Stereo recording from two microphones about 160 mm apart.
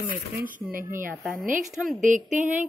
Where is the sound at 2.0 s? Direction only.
50° right (ahead or behind).